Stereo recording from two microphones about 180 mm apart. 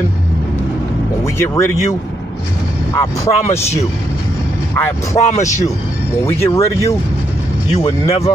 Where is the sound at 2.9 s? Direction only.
20° left (ahead or behind).